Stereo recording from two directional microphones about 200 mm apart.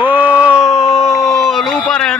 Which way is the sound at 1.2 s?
Centre (ahead or behind).